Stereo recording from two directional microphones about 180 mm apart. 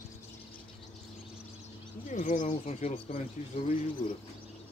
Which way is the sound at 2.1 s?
45° left (ahead or behind).